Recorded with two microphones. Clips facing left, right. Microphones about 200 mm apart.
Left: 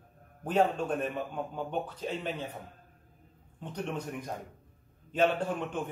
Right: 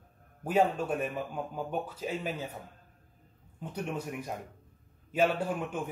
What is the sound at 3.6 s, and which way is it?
A man's voice, 10° right (ahead or behind).